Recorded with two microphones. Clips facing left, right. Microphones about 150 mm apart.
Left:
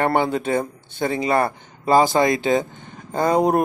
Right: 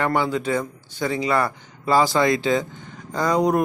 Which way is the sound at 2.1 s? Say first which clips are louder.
Left 1 dB; 20° left (ahead or behind).